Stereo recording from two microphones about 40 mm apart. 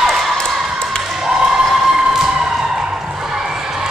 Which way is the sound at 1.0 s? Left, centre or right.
Centre.